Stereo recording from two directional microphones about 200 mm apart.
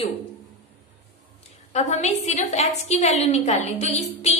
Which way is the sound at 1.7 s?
35° left (ahead or behind).